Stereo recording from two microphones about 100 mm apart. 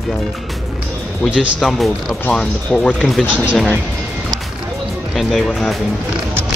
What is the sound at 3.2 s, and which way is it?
Speech, 15° right (ahead or behind).